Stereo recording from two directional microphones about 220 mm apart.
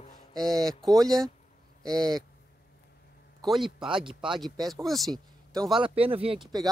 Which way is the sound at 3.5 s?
Centre (ahead or behind).